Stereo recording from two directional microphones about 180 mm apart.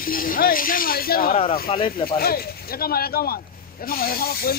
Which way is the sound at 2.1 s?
55° left (ahead or behind).